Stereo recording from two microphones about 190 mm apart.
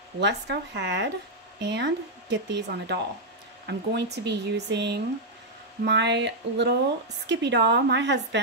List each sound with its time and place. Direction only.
0.2 s speech: 60° right (ahead or behind)